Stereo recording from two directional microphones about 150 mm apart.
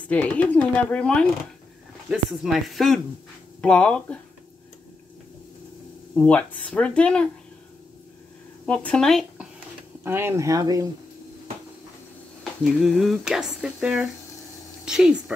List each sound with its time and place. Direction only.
0.1 s speech: 10° left (ahead or behind)
2.0 s a sound: 5° right (ahead or behind)
3.6 s speech: 5° left (ahead or behind)
6.1 s speech: 10° left (ahead or behind)
8.6 s speech: 10° left (ahead or behind)
10.0 s speech: 15° right (ahead or behind)
12.8 s a sound: centre (ahead or behind)